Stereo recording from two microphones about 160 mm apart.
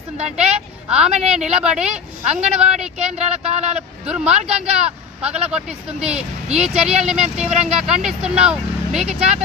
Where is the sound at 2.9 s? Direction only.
40° right (ahead or behind).